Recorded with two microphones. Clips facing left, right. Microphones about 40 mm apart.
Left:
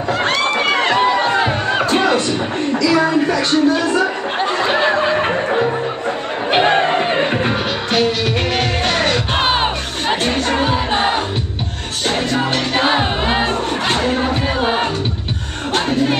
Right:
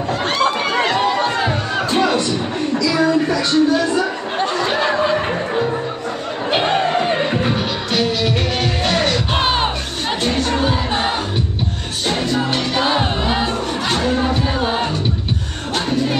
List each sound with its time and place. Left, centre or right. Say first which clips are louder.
0.9 s music: left 3 dB; centre
2.8 s a sound: left 2 dB; centre
3.3 s speech: even; left
4.6 s music: left 3 dB; centre
12.4 s music: left 1 dB; left